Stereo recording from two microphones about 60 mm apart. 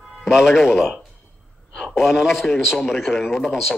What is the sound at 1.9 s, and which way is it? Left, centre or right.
A man's voice, centre.